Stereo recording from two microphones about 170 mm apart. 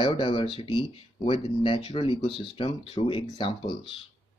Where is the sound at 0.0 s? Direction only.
30° left (ahead or behind).